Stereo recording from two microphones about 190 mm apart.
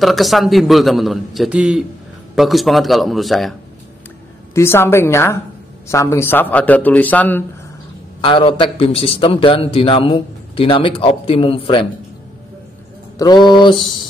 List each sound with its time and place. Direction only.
0.0 s a man's voice: centre (ahead or behind)
4.6 s a man's voice: 15° left (ahead or behind)
8.2 s a man's voice: 25° left (ahead or behind)
13.2 s a man's voice: 20° left (ahead or behind)